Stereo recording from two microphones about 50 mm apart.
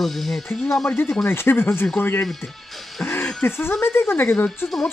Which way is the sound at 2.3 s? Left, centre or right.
Centre.